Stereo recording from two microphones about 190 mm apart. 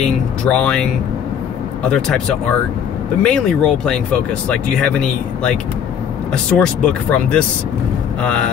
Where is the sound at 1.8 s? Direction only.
5° left (ahead or behind).